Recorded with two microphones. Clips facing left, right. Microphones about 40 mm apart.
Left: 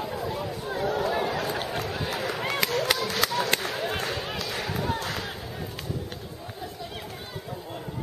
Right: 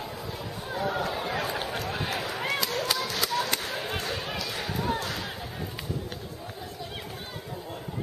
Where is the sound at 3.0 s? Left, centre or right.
Left.